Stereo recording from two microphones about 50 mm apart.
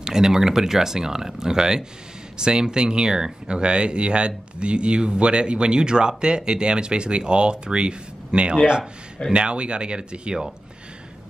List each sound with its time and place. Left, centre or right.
0.0 s speech: centre